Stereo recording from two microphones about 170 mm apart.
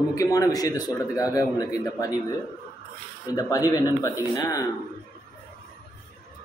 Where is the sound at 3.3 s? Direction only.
20° left (ahead or behind).